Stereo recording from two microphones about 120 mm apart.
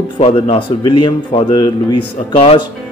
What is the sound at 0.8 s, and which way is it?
Speech, 40° left (ahead or behind).